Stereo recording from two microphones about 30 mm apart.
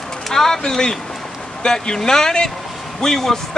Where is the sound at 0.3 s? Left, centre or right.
Centre.